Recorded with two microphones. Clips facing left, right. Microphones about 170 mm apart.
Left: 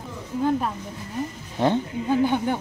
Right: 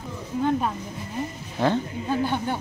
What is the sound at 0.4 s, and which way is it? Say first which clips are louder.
Speech: left 1 dB; 5° left (ahead or behind).